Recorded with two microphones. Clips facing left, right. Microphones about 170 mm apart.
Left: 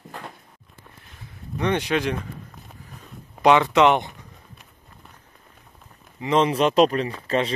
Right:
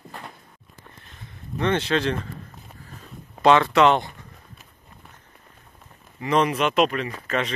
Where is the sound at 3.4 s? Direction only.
15° left (ahead or behind).